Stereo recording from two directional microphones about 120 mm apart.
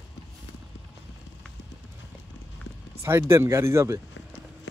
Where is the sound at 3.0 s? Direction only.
20° right (ahead or behind).